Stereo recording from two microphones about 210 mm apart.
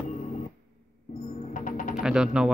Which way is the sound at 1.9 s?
5° right (ahead or behind).